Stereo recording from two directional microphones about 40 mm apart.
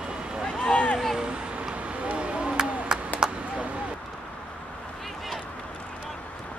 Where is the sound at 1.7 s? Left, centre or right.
Right.